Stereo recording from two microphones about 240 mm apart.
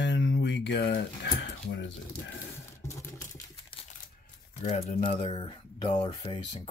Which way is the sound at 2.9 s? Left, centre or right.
Centre.